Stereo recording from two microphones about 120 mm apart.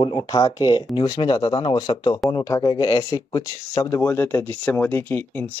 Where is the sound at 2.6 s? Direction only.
35° left (ahead or behind).